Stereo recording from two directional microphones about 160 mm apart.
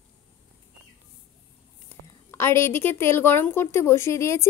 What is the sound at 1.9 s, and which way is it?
A woman's voice, 15° left (ahead or behind).